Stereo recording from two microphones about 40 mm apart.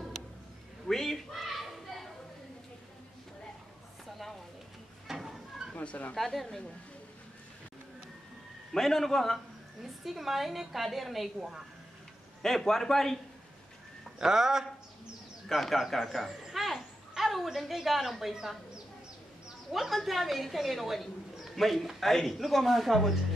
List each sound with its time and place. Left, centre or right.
0.8 s a sound: centre
5.0 s a sound: centre
5.8 s speech: left
6.1 s speech: centre
8.7 s a man's voice: centre
9.8 s speech: centre
12.4 s a man's voice: centre
14.1 s speech: centre
15.4 s speech: centre
16.5 s a sound: centre
17.8 s speech: centre
19.7 s speech: centre